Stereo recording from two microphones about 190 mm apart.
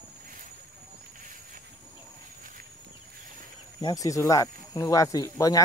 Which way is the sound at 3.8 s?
20° left (ahead or behind).